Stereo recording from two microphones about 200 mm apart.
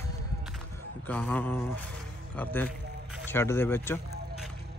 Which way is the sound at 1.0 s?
10° left (ahead or behind).